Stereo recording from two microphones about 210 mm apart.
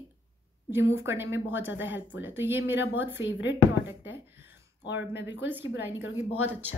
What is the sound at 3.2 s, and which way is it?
Speech, 60° left (ahead or behind).